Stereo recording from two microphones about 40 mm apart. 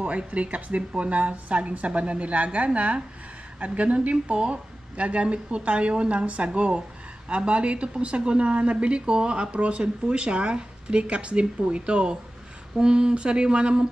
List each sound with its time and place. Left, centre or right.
0.0 s a woman's voice: right